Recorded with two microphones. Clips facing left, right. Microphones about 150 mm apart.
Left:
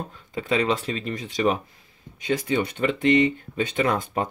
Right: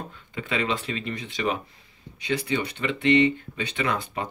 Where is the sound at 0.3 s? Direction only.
40° left (ahead or behind).